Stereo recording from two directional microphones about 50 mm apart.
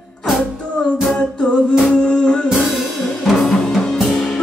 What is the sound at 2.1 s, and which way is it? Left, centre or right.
Music, centre.